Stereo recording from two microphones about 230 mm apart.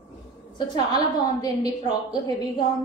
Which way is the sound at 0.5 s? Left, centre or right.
Centre.